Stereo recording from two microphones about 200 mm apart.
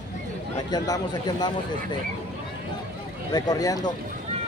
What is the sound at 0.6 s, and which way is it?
Speech, 20° left (ahead or behind).